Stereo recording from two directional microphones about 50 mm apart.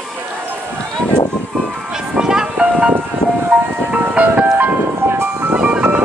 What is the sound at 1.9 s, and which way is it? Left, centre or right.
Music, centre.